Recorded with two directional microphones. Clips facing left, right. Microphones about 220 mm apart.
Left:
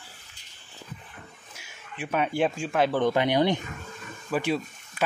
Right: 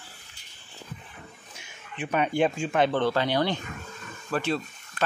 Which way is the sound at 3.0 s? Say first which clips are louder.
Left 2 dB; 20° left (ahead or behind).